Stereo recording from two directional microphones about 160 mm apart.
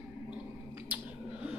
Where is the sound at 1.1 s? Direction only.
5° right (ahead or behind).